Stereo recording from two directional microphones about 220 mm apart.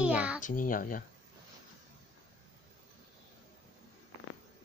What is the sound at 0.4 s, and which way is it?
Speech, 35° left (ahead or behind).